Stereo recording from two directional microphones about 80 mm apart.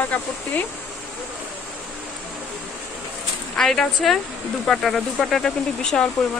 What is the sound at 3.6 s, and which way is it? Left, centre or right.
A woman's voice, centre.